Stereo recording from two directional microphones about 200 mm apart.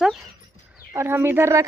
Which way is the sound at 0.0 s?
Centre (ahead or behind).